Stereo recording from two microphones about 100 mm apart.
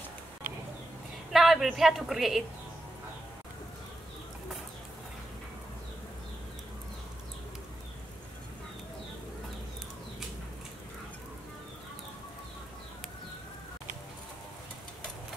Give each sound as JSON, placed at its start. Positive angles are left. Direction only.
{"t": 1.3, "sound": "speech", "side_deg": 0}